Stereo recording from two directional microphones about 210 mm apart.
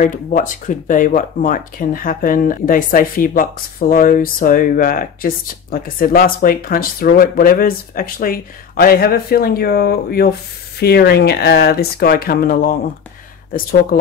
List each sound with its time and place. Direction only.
0.0 s speech: 40° left (ahead or behind)